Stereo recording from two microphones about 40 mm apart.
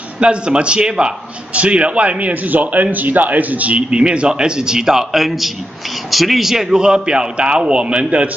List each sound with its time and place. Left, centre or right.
0.2 s a man's voice: right
1.5 s a man's voice: right
3.9 s a man's voice: right